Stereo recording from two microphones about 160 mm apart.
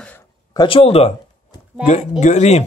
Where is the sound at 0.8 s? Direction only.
40° left (ahead or behind).